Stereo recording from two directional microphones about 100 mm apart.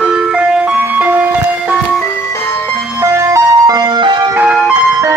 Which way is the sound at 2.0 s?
20° left (ahead or behind).